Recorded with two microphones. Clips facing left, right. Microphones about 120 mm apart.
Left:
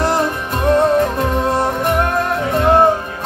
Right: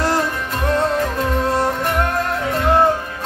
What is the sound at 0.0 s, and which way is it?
Music, 20° left (ahead or behind).